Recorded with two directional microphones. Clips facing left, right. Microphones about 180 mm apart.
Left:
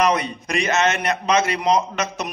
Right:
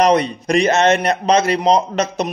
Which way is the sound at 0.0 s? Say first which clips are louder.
Right 6 dB; 35° right (ahead or behind).